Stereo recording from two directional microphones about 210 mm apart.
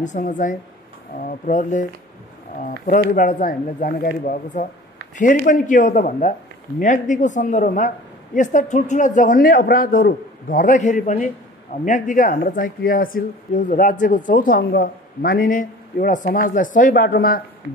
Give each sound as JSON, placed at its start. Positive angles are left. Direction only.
{"t": 0.0, "sound": "speech", "side_deg": 35}
{"t": 3.2, "sound": "a man's voice", "side_deg": 40}